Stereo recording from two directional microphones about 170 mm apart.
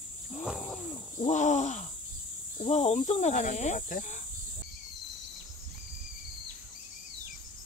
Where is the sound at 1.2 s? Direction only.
45° left (ahead or behind).